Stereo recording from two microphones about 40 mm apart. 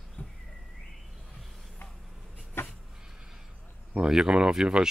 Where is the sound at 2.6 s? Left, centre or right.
Left.